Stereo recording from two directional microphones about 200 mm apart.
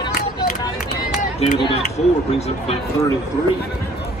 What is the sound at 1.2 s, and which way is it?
Speech, 35° left (ahead or behind).